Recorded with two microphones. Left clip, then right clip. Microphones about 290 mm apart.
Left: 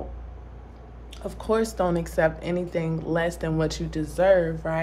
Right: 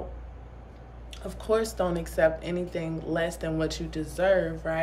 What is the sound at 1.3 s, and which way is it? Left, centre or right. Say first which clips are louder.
A woman's voice: left 2 dB; centre.